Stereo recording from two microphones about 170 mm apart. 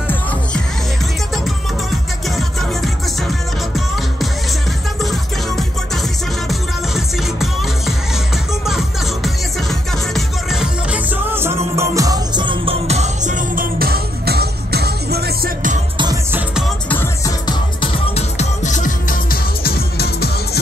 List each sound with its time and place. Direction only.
2.2 s music: centre (ahead or behind)
8.6 s music: centre (ahead or behind); by 15.8 s 55° right (ahead or behind)
16.3 s music: 10° right (ahead or behind)
16.9 s music: 15° left (ahead or behind)
17.5 s music: 35° left (ahead or behind); by 20.2 s 70° left (ahead or behind)